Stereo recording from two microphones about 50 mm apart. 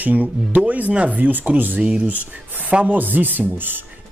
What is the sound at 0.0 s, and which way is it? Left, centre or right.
Speech, right.